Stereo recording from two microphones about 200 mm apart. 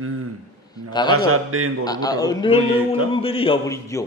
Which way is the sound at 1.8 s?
20° left (ahead or behind).